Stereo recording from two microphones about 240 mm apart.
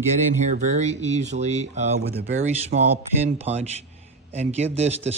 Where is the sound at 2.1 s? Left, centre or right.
Right.